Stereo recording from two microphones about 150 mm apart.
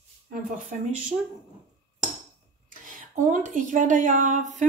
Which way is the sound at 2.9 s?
60° right (ahead or behind).